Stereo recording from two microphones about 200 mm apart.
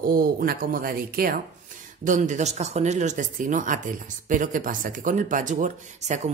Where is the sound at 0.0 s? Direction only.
45° right (ahead or behind).